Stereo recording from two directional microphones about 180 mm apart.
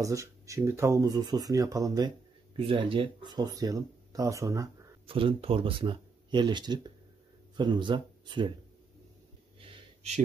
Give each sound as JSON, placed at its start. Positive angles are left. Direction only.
{"t": 0.0, "sound": "speech", "side_deg": -15}
{"t": 5.0, "sound": "speech", "side_deg": -30}
{"t": 9.6, "sound": "a sound", "side_deg": -35}